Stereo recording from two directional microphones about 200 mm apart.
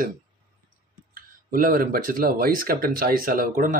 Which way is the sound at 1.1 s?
45° right (ahead or behind).